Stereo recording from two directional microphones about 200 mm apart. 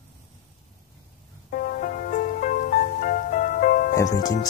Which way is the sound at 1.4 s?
45° left (ahead or behind).